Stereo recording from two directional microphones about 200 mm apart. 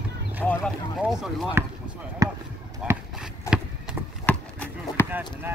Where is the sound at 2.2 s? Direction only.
15° right (ahead or behind).